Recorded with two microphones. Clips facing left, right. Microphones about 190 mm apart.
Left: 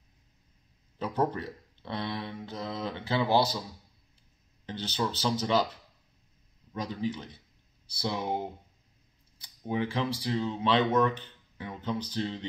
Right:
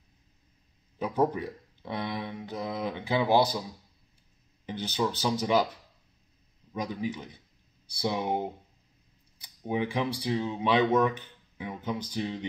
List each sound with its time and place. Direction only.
0.9 s speech: 10° right (ahead or behind)
4.6 s speech: 15° right (ahead or behind)
6.7 s speech: 10° right (ahead or behind)